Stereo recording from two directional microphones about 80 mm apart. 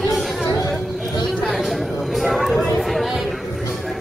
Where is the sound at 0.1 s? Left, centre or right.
Centre.